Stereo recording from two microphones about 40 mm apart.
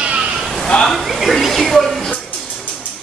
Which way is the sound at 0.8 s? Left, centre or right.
Centre.